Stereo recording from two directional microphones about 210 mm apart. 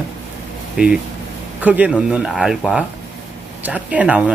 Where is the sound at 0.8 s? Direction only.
5° right (ahead or behind).